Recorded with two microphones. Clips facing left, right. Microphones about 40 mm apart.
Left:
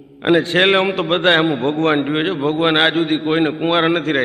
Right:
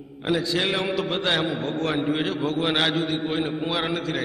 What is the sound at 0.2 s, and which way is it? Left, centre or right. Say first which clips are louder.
A man's voice: left 10 dB; left.